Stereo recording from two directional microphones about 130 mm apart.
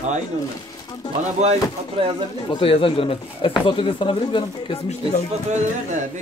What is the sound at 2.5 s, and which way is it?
Speech, 45° left (ahead or behind).